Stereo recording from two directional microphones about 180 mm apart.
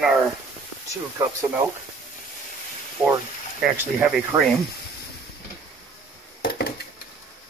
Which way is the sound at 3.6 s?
5° right (ahead or behind).